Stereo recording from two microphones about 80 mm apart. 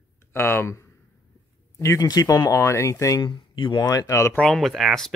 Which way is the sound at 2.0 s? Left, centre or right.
Left.